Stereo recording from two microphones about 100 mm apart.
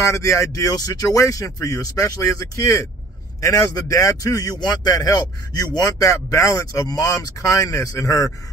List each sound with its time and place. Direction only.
0.0 s speech: 30° left (ahead or behind)